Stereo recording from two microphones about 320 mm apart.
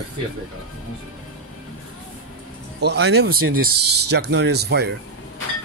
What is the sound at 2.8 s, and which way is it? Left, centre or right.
Speech, right.